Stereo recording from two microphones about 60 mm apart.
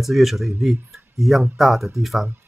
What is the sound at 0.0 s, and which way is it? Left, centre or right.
Speech, centre.